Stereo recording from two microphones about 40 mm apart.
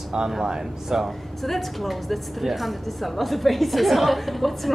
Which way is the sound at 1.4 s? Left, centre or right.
Centre.